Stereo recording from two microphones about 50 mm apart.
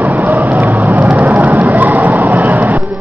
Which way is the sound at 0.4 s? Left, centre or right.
Right.